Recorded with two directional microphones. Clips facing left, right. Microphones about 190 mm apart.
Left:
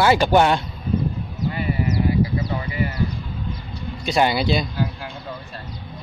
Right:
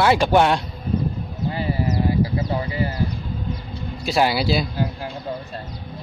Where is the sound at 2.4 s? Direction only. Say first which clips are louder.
Right 1 dB; 35° right (ahead or behind).